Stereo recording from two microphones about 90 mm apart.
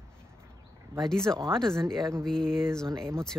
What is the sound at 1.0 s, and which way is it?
Speech, 5° left (ahead or behind).